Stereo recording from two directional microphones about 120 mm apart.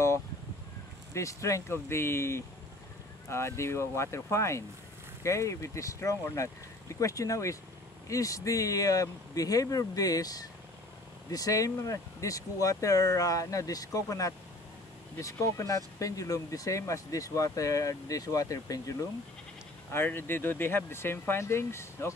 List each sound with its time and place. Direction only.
1.1 s speech: 25° left (ahead or behind)
19.9 s speech: 20° left (ahead or behind)